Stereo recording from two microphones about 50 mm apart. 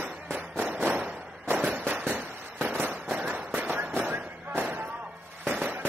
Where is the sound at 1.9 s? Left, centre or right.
Right.